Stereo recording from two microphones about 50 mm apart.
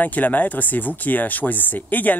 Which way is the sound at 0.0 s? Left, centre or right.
Left.